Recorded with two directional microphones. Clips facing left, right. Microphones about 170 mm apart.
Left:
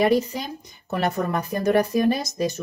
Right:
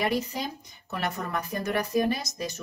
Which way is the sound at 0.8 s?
35° left (ahead or behind).